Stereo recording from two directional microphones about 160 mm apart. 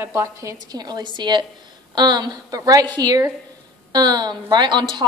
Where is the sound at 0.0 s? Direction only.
20° right (ahead or behind).